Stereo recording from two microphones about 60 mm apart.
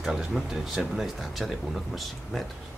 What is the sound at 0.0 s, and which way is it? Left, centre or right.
Speech, centre.